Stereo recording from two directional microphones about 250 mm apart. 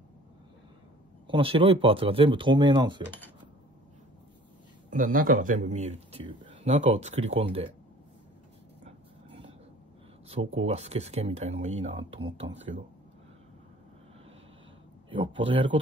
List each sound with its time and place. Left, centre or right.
1.2 s speech: right
4.9 s speech: right
8.8 s vehicle: right
10.2 s speech: right
15.0 s speech: centre